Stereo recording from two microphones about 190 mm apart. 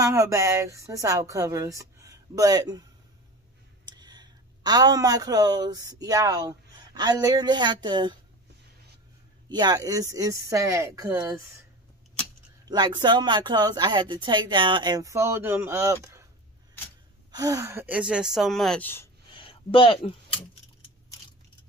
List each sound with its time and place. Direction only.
0.0 s a woman's voice: 15° right (ahead or behind)
3.8 s speech: 20° right (ahead or behind)
9.5 s a woman's voice: 20° right (ahead or behind)
12.6 s speech: 20° right (ahead or behind)
17.3 s speech: 20° right (ahead or behind); by 19.0 s 10° left (ahead or behind)
19.3 s a sound: 30° left (ahead or behind)